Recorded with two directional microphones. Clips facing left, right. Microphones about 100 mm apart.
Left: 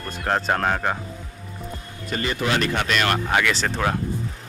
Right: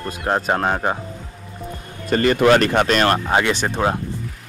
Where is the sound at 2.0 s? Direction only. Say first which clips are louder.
Right 10 dB; 55° right (ahead or behind).